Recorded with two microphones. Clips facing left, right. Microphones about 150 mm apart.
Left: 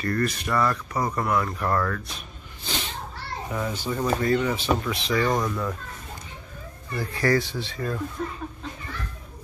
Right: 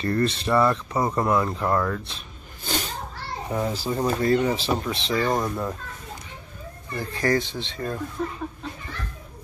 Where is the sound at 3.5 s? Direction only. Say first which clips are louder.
Right 3 dB; 30° right (ahead or behind).